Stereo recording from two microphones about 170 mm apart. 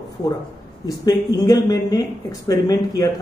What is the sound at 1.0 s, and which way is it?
Speech, 25° left (ahead or behind).